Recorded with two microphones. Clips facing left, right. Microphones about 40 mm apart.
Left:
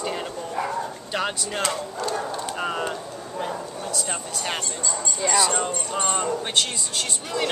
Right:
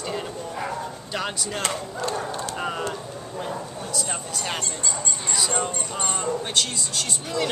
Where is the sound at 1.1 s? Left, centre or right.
Centre.